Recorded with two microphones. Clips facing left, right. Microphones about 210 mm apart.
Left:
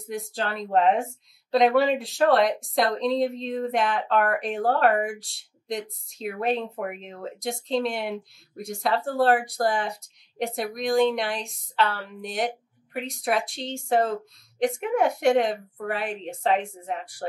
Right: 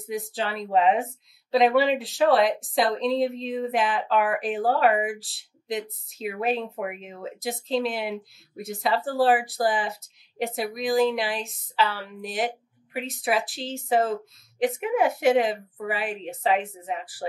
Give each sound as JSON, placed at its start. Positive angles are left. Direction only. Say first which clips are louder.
{"t": 0.1, "sound": "speech", "louder": "right 1 dB", "side_deg": 0}